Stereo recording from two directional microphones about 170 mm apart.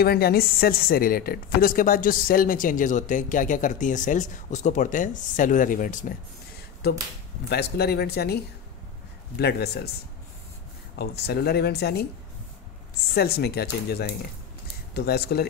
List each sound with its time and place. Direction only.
0.0 s a woman's voice: 65° left (ahead or behind)
7.4 s speech: 70° left (ahead or behind)
9.4 s speech: 70° left (ahead or behind)
11.0 s speech: 70° left (ahead or behind)
13.1 s speech: 70° left (ahead or behind)